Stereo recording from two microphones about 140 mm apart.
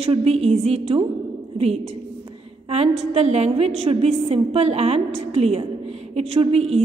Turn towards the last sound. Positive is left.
turn(degrees=-45)  # may be behind; listen again after turning